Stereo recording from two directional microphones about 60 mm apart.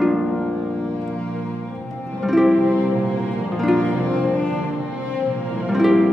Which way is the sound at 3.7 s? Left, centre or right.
Centre.